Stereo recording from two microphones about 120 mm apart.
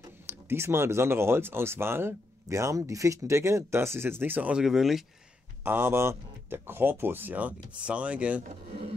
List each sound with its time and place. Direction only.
0.3 s speech: 20° right (ahead or behind); by 5.0 s centre (ahead or behind)
5.6 s speech: 20° right (ahead or behind)
8.6 s a sound: 55° right (ahead or behind)